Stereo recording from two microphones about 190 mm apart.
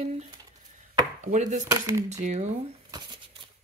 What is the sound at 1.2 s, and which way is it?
Speech, 40° right (ahead or behind).